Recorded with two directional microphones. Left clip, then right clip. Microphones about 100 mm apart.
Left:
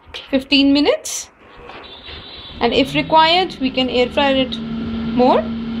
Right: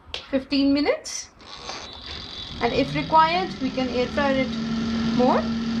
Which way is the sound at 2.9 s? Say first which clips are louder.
Left 5 dB; 45° left (ahead or behind).